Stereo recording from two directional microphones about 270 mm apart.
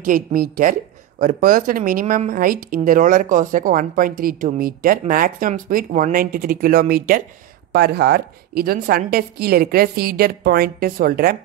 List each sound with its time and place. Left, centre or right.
0.0 s speech: right